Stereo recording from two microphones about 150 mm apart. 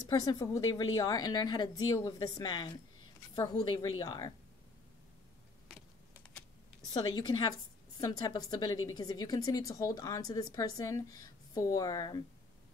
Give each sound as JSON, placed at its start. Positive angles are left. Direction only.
{"t": 0.0, "sound": "speech", "side_deg": 25}
{"t": 6.9, "sound": "speech", "side_deg": 25}